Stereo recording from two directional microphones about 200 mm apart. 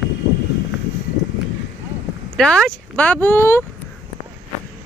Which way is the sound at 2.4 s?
5° left (ahead or behind).